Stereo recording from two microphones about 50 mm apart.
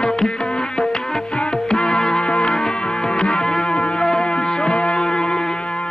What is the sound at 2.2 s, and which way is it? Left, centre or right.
Music, left.